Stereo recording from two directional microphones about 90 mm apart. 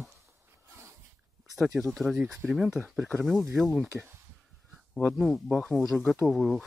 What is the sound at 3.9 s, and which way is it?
Speech, 25° right (ahead or behind).